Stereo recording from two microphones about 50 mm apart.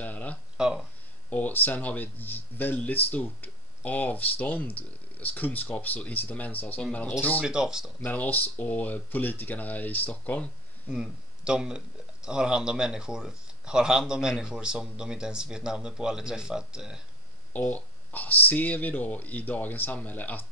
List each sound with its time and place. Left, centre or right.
0.0 s a sound: left
0.6 s a sound: centre
1.3 s speech: left
7.4 s speech: centre
8.0 s speech: left
10.9 s speech: centre
17.5 s speech: left